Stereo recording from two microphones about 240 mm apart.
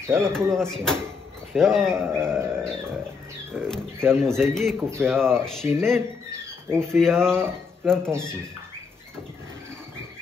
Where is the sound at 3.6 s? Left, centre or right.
Centre.